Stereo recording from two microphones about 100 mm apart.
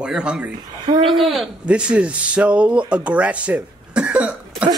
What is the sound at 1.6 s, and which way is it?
Speech, 10° right (ahead or behind).